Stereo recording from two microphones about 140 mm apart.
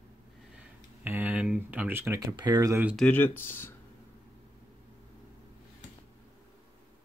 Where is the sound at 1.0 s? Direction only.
10° right (ahead or behind).